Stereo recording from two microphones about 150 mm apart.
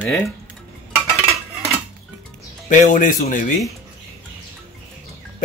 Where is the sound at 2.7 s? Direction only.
60° left (ahead or behind).